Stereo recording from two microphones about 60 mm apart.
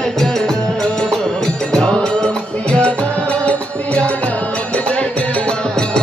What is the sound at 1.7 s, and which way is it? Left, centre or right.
Music, centre.